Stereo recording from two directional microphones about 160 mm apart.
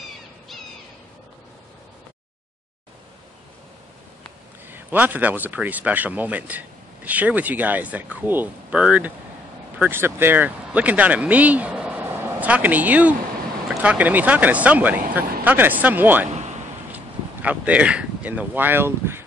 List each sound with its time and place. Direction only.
4.6 s speech: 10° right (ahead or behind)
16.3 s a sound: 45° right (ahead or behind)
16.9 s speech: 10° right (ahead or behind)